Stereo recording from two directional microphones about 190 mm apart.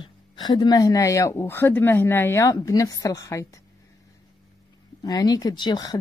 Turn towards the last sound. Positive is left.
turn(degrees=20)  # may be behind; listen again after turning